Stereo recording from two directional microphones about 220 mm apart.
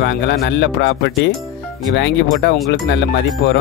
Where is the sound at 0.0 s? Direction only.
50° left (ahead or behind).